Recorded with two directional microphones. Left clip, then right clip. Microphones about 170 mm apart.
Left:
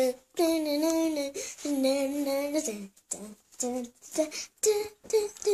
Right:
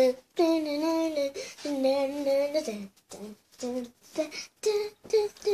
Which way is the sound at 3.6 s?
20° left (ahead or behind).